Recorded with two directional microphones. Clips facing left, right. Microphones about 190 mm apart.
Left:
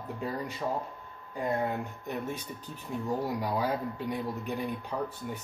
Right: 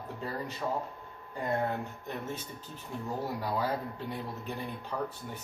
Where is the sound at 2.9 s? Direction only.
15° left (ahead or behind).